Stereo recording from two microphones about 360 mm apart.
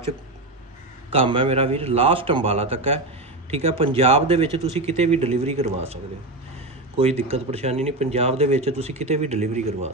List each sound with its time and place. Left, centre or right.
1.1 s speech: centre
7.0 s speech: centre